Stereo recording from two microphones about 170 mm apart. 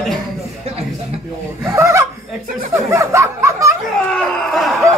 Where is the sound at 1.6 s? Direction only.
15° right (ahead or behind).